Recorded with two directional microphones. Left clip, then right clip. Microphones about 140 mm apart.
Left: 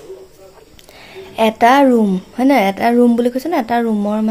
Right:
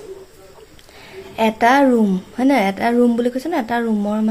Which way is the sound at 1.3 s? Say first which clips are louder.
Left 3 dB; 20° left (ahead or behind).